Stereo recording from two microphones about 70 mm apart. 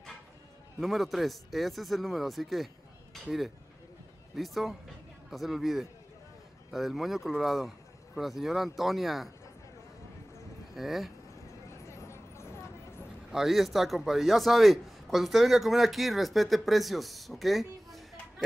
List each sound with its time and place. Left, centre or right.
0.7 s a man's voice: centre
10.7 s speech: centre
11.7 s a sound: left
13.3 s a man's voice: centre